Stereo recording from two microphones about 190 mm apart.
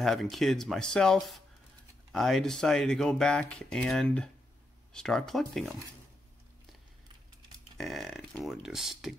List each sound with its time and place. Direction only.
0.0 s speech: centre (ahead or behind)
7.7 s speech: centre (ahead or behind)